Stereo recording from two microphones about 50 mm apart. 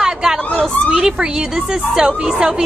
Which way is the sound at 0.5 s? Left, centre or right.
Left.